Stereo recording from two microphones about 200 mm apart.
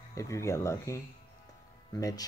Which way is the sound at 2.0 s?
20° left (ahead or behind).